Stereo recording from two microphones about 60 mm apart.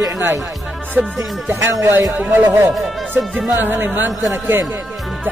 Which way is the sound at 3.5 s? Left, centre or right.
Right.